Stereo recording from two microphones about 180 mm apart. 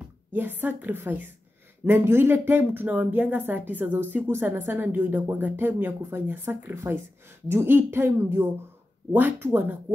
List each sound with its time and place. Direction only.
0.3 s speech: 10° right (ahead or behind)